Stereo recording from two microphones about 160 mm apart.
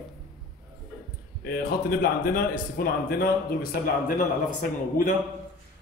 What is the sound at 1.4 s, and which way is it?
Speech, 75° left (ahead or behind).